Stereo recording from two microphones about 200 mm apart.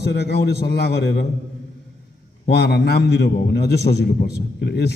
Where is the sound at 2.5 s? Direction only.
55° left (ahead or behind).